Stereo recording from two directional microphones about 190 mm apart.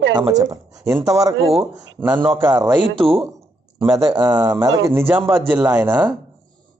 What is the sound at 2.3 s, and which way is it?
Speech, 20° right (ahead or behind).